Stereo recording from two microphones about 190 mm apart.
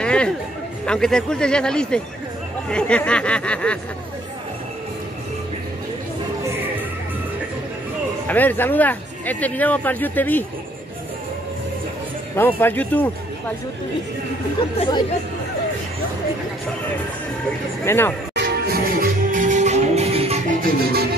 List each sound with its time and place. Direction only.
0.0 s a sound: 5° left (ahead or behind)
0.8 s speech: 5° left (ahead or behind)
8.3 s speech: 10° left (ahead or behind)
12.4 s speech: 10° left (ahead or behind)
17.8 s speech: 10° left (ahead or behind)
18.3 s music: 60° right (ahead or behind)